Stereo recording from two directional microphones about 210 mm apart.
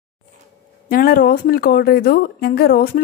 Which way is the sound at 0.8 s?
45° left (ahead or behind).